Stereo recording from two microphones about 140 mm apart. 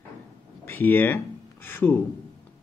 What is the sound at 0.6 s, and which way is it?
Speech, 15° left (ahead or behind).